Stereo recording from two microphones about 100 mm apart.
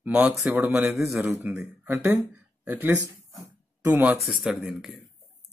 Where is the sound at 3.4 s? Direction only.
25° right (ahead or behind).